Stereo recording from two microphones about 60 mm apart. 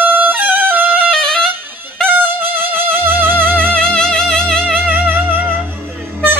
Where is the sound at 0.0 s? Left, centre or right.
Right.